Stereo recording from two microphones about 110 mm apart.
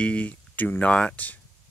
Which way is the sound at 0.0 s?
10° left (ahead or behind).